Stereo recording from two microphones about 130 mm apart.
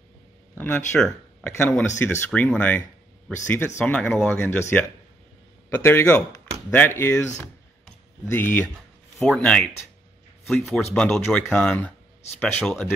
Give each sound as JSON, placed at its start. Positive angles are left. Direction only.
{"t": 0.6, "sound": "speech", "side_deg": 10}
{"t": 1.4, "sound": "speech", "side_deg": 20}
{"t": 3.8, "sound": "speech", "side_deg": 10}
{"t": 8.3, "sound": "speech", "side_deg": 15}
{"t": 9.2, "sound": "speech", "side_deg": 5}